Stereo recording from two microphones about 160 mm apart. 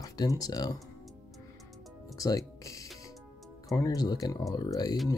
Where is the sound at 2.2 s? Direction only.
20° left (ahead or behind).